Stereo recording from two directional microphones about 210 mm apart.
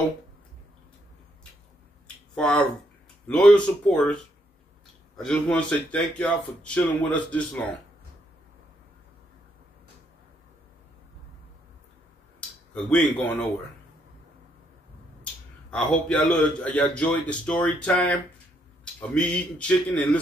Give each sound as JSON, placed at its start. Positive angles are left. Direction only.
{"t": 2.3, "sound": "speech", "side_deg": 5}
{"t": 12.9, "sound": "speech", "side_deg": 5}
{"t": 15.7, "sound": "speech", "side_deg": 5}